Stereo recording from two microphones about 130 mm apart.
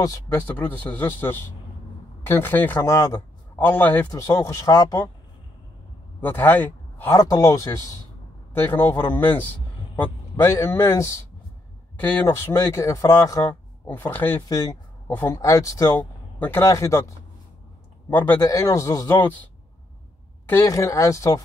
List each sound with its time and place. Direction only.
0.0 s speech: 25° left (ahead or behind)
0.5 s speech: 10° left (ahead or behind)
3.5 s speech: 15° left (ahead or behind)
4.1 s speech: 25° left (ahead or behind)
6.2 s speech: 15° left (ahead or behind)
7.2 s speech: 30° left (ahead or behind)
12.3 s speech: 20° left (ahead or behind)
14.1 s speech: 15° left (ahead or behind)
14.5 s speech: 25° left (ahead or behind)
15.0 s speech: 15° left (ahead or behind)
15.3 s speech: 25° left (ahead or behind)
16.0 s a man's voice: 15° left (ahead or behind)
18.1 s speech: 15° left (ahead or behind)
20.6 s speech: 25° left (ahead or behind)